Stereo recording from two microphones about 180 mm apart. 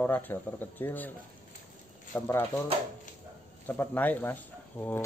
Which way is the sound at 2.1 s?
15° left (ahead or behind).